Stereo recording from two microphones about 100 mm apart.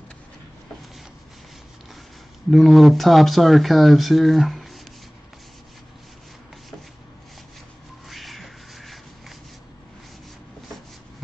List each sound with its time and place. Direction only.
2.5 s speech: centre (ahead or behind)
8.1 s crow: centre (ahead or behind)